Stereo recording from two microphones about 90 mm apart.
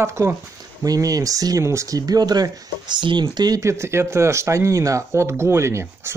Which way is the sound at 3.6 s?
30° right (ahead or behind).